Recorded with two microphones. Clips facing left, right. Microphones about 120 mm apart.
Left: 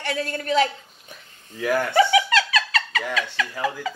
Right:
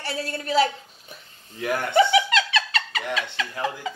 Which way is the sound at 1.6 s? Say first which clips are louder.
Left 1 dB; 20° right (ahead or behind).